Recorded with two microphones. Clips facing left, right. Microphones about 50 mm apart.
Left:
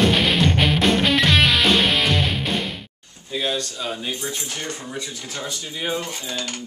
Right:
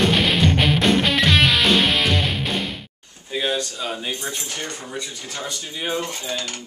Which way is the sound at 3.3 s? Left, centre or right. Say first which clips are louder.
Right 1 dB; centre.